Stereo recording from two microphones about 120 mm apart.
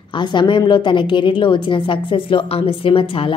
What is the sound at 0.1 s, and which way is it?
A woman's voice, 40° left (ahead or behind).